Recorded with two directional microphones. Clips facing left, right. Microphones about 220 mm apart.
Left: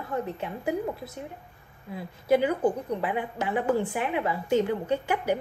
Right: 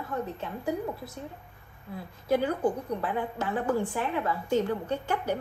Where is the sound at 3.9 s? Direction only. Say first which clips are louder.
Left 2 dB; 15° left (ahead or behind).